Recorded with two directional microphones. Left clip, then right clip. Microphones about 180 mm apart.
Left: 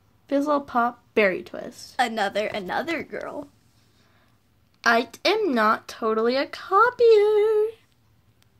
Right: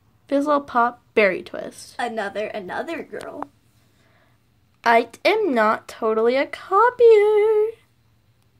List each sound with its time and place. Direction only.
0.3 s speech: centre (ahead or behind)
2.0 s a woman's voice: 50° left (ahead or behind)
4.8 s speech: centre (ahead or behind)